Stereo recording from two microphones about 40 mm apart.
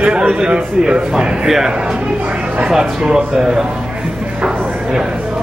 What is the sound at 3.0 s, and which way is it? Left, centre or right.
Speech, centre.